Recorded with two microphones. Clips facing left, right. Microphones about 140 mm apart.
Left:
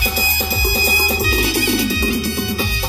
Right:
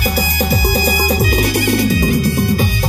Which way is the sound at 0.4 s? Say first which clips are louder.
Right 7 dB; 55° right (ahead or behind).